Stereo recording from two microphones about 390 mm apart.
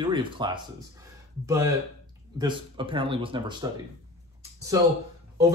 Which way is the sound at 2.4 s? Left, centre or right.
Centre.